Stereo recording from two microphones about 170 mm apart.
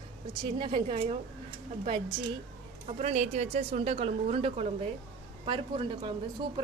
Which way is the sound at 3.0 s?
45° right (ahead or behind).